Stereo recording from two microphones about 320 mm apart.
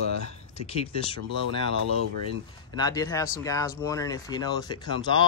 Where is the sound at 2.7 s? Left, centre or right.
Centre.